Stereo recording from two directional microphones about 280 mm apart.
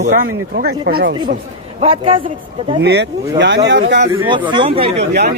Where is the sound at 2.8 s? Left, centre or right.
Right.